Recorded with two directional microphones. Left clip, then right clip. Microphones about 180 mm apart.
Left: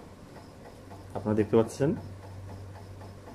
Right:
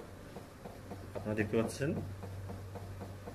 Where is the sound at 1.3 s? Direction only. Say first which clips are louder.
Left 9 dB; 30° left (ahead or behind).